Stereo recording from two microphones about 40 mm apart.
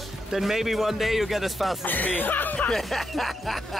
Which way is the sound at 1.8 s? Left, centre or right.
Left.